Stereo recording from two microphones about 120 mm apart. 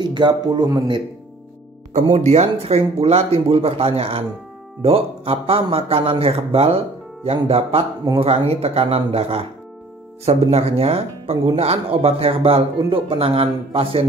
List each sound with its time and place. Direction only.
0.0 s a man's voice: 40° right (ahead or behind)
2.1 s speech: 70° right (ahead or behind); by 14.0 s 50° right (ahead or behind)